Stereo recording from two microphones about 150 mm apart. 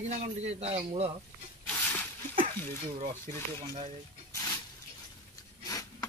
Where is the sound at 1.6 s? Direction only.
15° left (ahead or behind).